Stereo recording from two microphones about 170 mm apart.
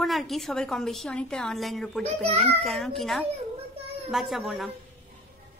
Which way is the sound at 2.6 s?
Centre (ahead or behind).